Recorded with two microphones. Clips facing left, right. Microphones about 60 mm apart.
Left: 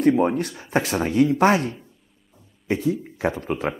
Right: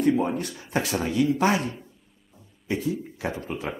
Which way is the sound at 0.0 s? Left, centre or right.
Left.